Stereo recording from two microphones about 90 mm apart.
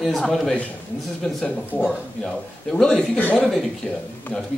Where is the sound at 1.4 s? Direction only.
20° left (ahead or behind).